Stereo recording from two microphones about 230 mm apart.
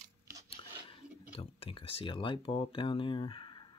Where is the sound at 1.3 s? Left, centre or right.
Left.